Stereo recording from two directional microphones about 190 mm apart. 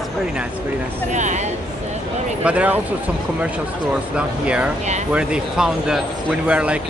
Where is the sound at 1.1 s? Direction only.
40° right (ahead or behind).